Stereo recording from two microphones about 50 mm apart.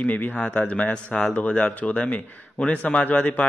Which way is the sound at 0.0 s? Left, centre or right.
Left.